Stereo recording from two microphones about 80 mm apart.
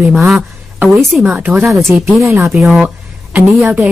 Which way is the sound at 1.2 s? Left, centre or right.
Centre.